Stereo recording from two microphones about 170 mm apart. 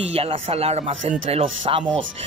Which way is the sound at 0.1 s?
35° right (ahead or behind).